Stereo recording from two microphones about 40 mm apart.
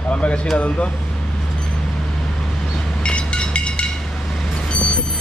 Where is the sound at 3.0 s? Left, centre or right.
Left.